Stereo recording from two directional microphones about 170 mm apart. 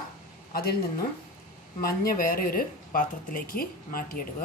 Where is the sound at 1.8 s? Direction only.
60° left (ahead or behind).